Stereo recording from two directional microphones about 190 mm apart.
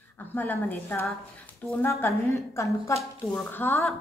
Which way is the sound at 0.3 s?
10° left (ahead or behind).